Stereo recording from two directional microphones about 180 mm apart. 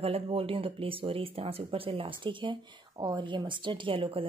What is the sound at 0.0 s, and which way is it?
Speech, 30° right (ahead or behind).